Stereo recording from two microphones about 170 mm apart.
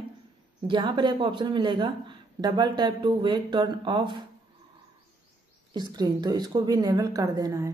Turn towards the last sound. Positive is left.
turn(degrees=-20)  # may be behind; listen again after turning